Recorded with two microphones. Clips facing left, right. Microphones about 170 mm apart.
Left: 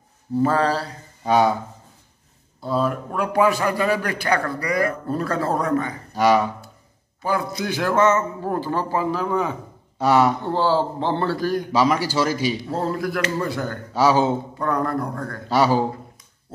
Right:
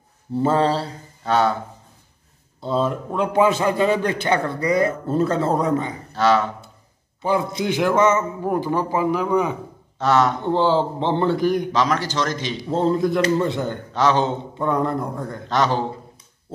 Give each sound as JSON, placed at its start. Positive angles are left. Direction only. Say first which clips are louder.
{"t": 0.4, "sound": "a man's voice", "louder": "right 1 dB", "side_deg": -25}
{"t": 1.2, "sound": "speech", "louder": "left 1 dB", "side_deg": 10}
{"t": 2.6, "sound": "a man's voice", "louder": "right 1 dB", "side_deg": -25}
{"t": 6.1, "sound": "speech", "louder": "left 1 dB", "side_deg": 10}
{"t": 7.2, "sound": "a man's voice", "louder": "right 3 dB", "side_deg": -25}
{"t": 9.9, "sound": "speech", "louder": "left 1 dB", "side_deg": 10}
{"t": 10.4, "sound": "a man's voice", "louder": "right 2 dB", "side_deg": -20}
{"t": 11.7, "sound": "speech", "louder": "left 2 dB", "side_deg": 10}
{"t": 12.6, "sound": "a man's voice", "louder": "right 5 dB", "side_deg": -20}
{"t": 13.9, "sound": "speech", "louder": "left 2 dB", "side_deg": 10}
{"t": 14.6, "sound": "a man's voice", "louder": "right 4 dB", "side_deg": -20}
{"t": 15.4, "sound": "speech", "louder": "left 2 dB", "side_deg": 10}